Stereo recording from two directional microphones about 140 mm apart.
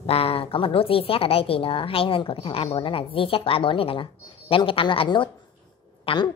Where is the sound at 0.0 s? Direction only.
45° left (ahead or behind).